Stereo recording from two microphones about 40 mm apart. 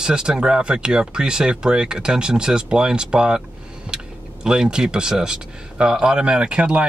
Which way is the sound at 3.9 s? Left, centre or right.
Right.